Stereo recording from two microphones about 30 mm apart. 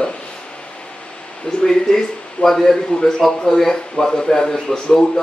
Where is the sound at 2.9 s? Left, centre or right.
Left.